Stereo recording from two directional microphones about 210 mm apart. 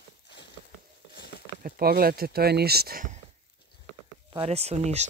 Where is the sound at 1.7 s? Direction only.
45° right (ahead or behind).